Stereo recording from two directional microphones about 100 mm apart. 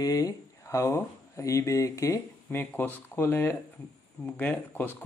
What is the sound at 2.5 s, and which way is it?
Speech, 20° left (ahead or behind).